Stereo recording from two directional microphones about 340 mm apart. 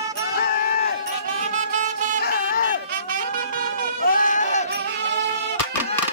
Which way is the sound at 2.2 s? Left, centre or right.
Left.